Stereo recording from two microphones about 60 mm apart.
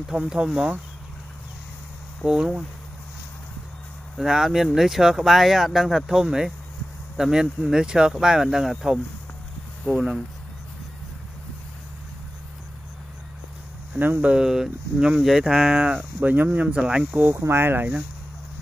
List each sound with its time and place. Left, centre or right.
0.0 s speech: centre
2.2 s speech: centre
4.2 s speech: centre
13.9 s speech: right
14.3 s speech: centre; by 16.4 s right
16.5 s speech: centre
17.3 s speech: right